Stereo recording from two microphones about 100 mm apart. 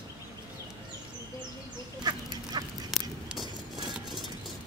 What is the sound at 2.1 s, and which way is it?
Duck, 45° right (ahead or behind).